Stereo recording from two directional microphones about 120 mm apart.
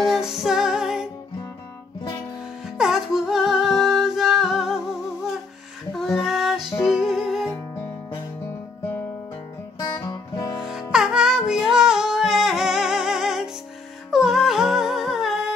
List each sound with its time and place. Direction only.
0.0 s music: centre (ahead or behind)
2.8 s music: 5° right (ahead or behind)
5.9 s music: centre (ahead or behind)
7.4 s music: 20° left (ahead or behind)
9.8 s music: 35° left (ahead or behind)
10.6 s music: 5° right (ahead or behind)
14.1 s humming: 5° right (ahead or behind)